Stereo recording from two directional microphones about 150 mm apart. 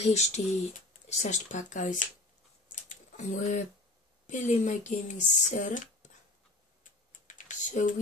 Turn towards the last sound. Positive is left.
turn(degrees=55)  # may be behind; listen again after turning